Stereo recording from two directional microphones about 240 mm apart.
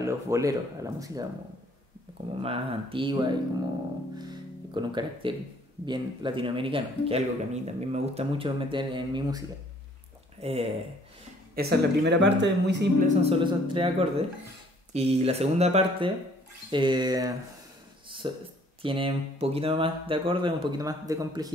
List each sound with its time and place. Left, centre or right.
0.0 s speech: centre
2.4 s a man's voice: right
4.3 s a man's voice: centre
10.4 s a man's voice: right
11.5 s speech: right
13.1 s a man's voice: right